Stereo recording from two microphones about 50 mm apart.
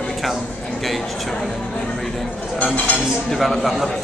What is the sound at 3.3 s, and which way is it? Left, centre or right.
Speech, centre.